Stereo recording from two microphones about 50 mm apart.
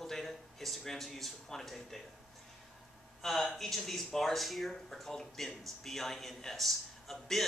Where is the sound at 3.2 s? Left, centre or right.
Centre.